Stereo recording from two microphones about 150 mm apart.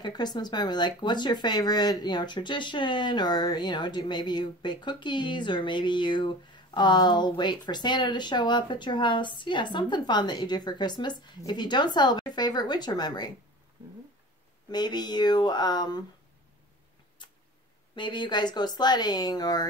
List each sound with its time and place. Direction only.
0.0 s speech: 30° left (ahead or behind)
14.7 s speech: 30° left (ahead or behind)
17.2 s tick-tock: 30° left (ahead or behind)
17.9 s speech: 30° left (ahead or behind)